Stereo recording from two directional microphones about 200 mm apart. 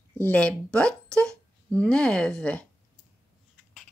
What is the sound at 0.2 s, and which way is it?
Speech, 5° left (ahead or behind).